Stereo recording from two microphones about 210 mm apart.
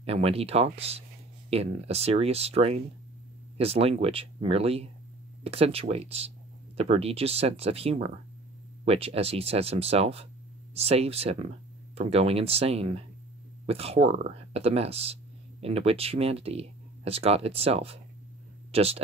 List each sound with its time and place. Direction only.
0.0 s speech: 30° right (ahead or behind)